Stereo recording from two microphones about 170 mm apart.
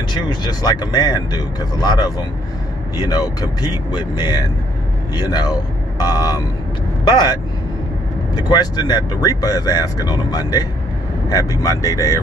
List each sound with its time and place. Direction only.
0.1 s speech: 25° left (ahead or behind)
8.4 s speech: 25° left (ahead or behind)